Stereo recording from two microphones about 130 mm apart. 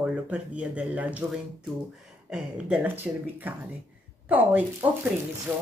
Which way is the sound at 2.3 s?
10° right (ahead or behind).